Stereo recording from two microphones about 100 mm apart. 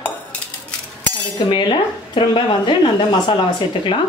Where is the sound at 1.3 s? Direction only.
50° left (ahead or behind).